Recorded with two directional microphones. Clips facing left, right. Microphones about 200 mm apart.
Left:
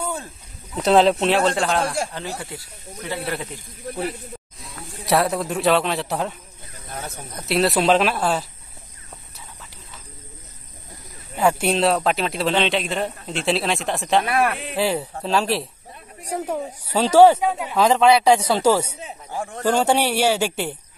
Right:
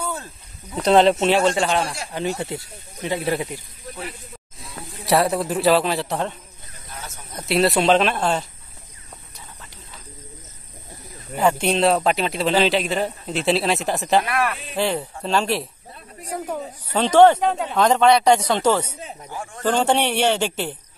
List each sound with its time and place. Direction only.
0.0 s snake: 15° left (ahead or behind)
0.7 s a man's voice: centre (ahead or behind)
2.1 s speech: 25° right (ahead or behind)
5.0 s a man's voice: centre (ahead or behind)
6.9 s snake: 55° left (ahead or behind)
7.3 s a man's voice: centre (ahead or behind)
11.4 s a man's voice: 5° left (ahead or behind)
14.4 s speech: 60° left (ahead or behind)
14.8 s a man's voice: 5° left (ahead or behind)